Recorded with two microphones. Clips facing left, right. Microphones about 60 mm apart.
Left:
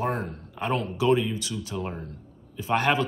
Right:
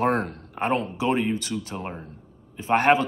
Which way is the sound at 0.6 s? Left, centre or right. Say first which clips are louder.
Right 2 dB; right.